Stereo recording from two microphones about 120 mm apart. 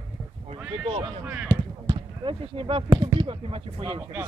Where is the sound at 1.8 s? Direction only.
45° right (ahead or behind).